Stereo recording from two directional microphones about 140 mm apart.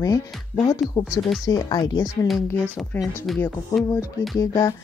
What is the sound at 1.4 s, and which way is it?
Speech, 30° left (ahead or behind).